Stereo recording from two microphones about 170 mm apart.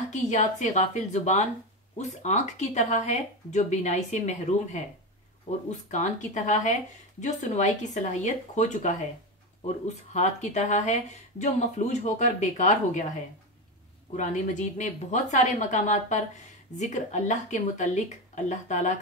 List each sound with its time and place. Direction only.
0.1 s speech: 45° left (ahead or behind)
5.9 s speech: 45° left (ahead or behind)
14.1 s speech: 45° left (ahead or behind)